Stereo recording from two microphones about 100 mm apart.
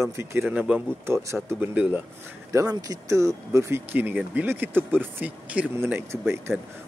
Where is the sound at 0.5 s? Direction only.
15° right (ahead or behind).